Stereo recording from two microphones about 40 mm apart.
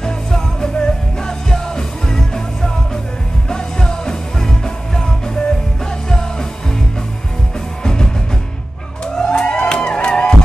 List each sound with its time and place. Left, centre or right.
0.0 s music: centre
7.8 s music: centre
9.0 s a sound: centre